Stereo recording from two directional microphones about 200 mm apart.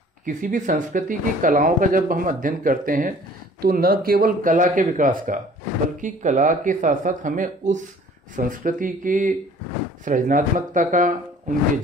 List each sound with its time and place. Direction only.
0.2 s speech: 40° right (ahead or behind)